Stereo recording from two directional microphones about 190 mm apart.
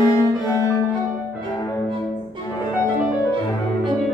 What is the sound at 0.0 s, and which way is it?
Cello, 20° left (ahead or behind).